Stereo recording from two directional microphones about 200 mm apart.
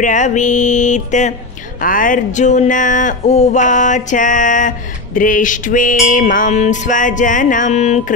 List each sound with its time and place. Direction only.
0.0 s speech: 40° left (ahead or behind)